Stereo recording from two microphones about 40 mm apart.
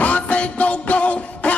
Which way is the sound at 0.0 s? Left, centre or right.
Left.